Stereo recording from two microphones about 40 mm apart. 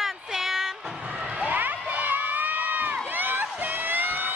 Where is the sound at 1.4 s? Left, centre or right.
Right.